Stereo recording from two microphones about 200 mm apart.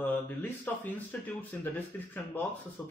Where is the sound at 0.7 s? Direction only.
10° left (ahead or behind).